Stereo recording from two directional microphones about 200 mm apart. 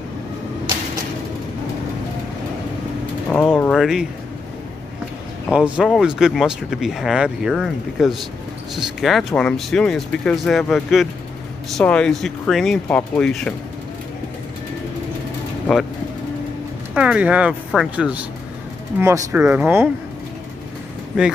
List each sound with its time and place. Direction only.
3.3 s speech: 5° left (ahead or behind)
5.5 s speech: 5° right (ahead or behind)
16.9 s speech: 5° right (ahead or behind)